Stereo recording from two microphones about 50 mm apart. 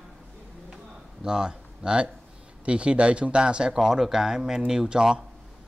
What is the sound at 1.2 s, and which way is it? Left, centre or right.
Speech, centre.